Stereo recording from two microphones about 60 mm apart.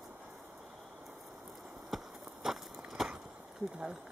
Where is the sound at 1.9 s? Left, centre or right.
Centre.